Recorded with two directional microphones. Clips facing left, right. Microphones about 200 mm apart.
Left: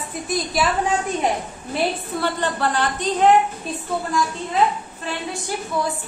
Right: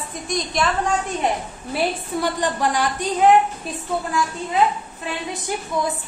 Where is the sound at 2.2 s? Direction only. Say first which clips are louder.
Right 1 dB; 15° right (ahead or behind).